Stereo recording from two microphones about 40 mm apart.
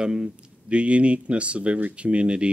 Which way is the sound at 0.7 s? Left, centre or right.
Right.